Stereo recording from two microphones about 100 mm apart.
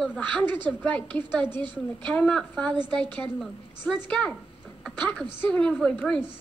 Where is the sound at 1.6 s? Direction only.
50° right (ahead or behind).